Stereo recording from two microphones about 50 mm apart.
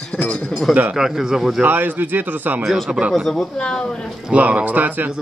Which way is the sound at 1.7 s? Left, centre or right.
Right.